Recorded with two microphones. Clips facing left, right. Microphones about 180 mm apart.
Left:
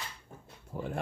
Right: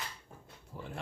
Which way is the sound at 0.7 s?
55° left (ahead or behind).